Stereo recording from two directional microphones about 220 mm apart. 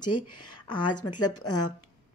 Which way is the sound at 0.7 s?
20° left (ahead or behind).